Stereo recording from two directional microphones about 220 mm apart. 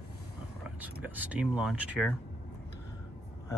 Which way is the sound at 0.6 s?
5° right (ahead or behind).